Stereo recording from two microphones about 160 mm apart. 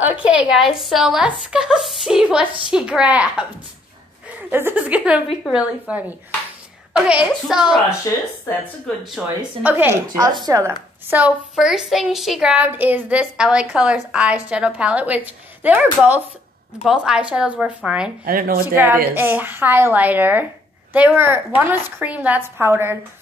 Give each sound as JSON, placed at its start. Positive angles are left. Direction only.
{"t": 0.0, "sound": "a woman's voice", "side_deg": -10}
{"t": 4.5, "sound": "a woman's voice", "side_deg": -15}
{"t": 8.1, "sound": "speech", "side_deg": 20}
{"t": 9.0, "sound": "a woman's voice", "side_deg": -5}
{"t": 10.0, "sound": "a woman's voice", "side_deg": -25}
{"t": 11.1, "sound": "a woman's voice", "side_deg": -10}
{"t": 18.2, "sound": "speech", "side_deg": -65}
{"t": 19.0, "sound": "a woman's voice", "side_deg": -15}